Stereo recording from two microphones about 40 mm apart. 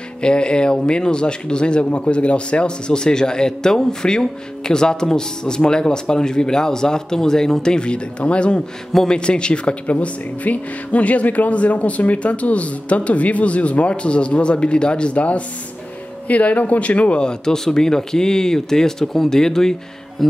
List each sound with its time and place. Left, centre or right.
0.2 s a man's voice: left
17.2 s a man's voice: centre